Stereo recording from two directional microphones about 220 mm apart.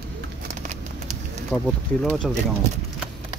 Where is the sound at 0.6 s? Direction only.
30° right (ahead or behind).